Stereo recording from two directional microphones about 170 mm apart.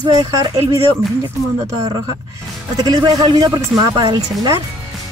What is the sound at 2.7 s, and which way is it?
Speech, 25° right (ahead or behind).